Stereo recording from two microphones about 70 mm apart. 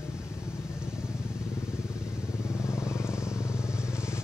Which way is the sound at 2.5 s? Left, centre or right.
Left.